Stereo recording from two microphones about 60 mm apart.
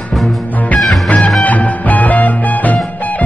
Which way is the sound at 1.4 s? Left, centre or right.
Left.